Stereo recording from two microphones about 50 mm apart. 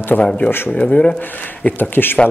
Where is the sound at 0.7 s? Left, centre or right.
Left.